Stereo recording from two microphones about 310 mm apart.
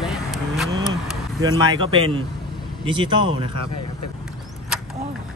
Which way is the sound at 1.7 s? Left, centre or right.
Centre.